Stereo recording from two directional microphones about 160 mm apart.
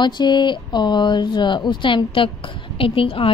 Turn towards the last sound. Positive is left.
turn(degrees=35)  # may be behind; listen again after turning